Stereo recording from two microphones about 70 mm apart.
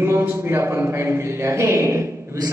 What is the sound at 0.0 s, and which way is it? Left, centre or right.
A man's voice, right.